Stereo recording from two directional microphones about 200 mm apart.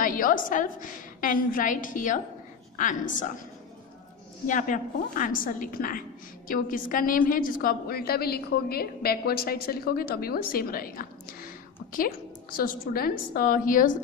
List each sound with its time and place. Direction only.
0.0 s a woman's voice: 45° left (ahead or behind)
4.5 s a woman's voice: 40° left (ahead or behind)